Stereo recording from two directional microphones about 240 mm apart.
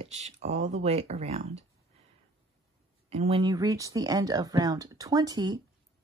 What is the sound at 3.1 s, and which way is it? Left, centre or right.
Speech, right.